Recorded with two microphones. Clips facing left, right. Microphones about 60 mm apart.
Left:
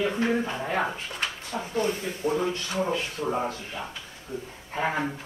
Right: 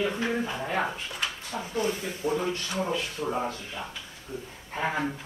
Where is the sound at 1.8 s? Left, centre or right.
Centre.